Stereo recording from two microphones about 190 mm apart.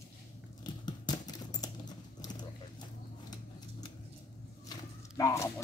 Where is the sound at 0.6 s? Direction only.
20° left (ahead or behind).